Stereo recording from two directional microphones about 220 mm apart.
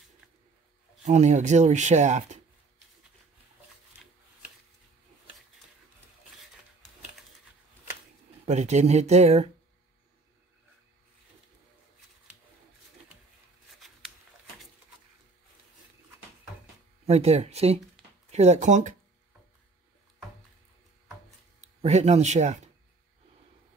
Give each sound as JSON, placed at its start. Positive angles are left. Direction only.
{"t": 1.0, "sound": "speech", "side_deg": -30}
{"t": 8.5, "sound": "speech", "side_deg": -30}
{"t": 13.7, "sound": "a sound", "side_deg": 0}
{"t": 17.0, "sound": "speech", "side_deg": -30}
{"t": 21.5, "sound": "speech", "side_deg": -30}